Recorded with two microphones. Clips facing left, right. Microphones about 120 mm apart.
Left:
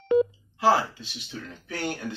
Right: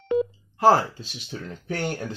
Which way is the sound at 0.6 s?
45° right (ahead or behind).